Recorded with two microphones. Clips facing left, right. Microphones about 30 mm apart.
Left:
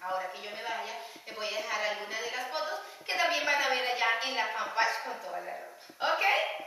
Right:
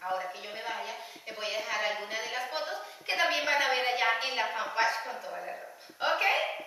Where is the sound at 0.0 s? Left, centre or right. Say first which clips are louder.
Right 1 dB; centre.